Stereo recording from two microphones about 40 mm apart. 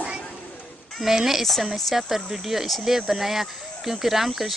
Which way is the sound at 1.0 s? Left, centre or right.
Centre.